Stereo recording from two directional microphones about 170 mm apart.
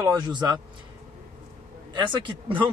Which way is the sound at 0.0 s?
25° right (ahead or behind).